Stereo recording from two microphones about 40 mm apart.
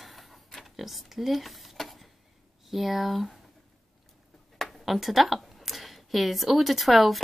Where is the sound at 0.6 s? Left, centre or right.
Centre.